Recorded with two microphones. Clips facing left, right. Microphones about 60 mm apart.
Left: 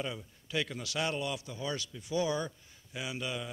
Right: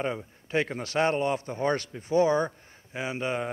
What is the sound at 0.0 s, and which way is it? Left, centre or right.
A man's voice, right.